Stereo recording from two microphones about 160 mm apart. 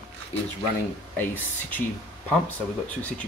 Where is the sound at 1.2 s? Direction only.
10° left (ahead or behind).